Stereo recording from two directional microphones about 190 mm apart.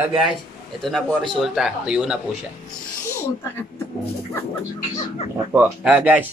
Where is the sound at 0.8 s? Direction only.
Centre (ahead or behind).